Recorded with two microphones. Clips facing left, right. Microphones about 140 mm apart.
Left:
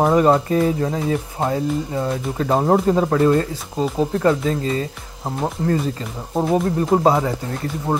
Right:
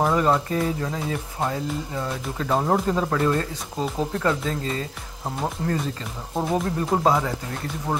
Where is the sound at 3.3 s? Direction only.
5° left (ahead or behind).